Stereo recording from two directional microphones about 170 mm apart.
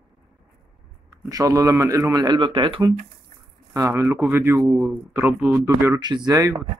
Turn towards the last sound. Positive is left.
turn(degrees=-20)  # may be behind; listen again after turning